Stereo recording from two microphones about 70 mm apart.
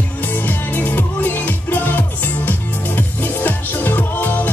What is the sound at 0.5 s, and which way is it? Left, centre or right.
Music, left.